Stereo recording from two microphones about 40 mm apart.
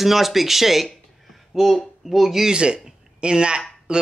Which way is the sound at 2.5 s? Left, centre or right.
Right.